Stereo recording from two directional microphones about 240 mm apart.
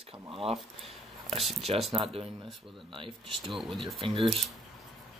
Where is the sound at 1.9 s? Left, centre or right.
Right.